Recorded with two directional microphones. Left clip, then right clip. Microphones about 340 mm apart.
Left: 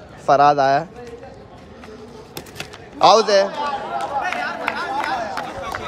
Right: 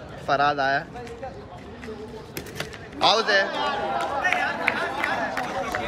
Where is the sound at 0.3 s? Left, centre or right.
Centre.